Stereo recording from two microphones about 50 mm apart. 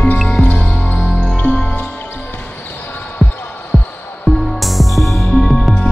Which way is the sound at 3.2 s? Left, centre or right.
Centre.